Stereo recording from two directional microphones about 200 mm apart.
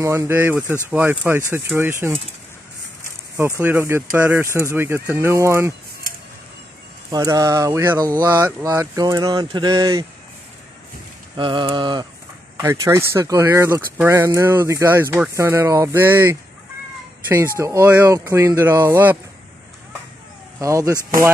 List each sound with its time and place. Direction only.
0.0 s speech: 15° right (ahead or behind)
3.3 s speech: 10° right (ahead or behind)
7.1 s speech: 20° right (ahead or behind)
11.3 s speech: 25° right (ahead or behind)
20.5 s speech: 15° right (ahead or behind)